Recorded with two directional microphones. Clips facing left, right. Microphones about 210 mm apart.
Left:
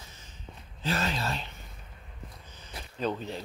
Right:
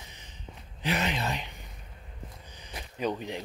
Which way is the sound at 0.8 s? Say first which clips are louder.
Right 1 dB; 20° right (ahead or behind).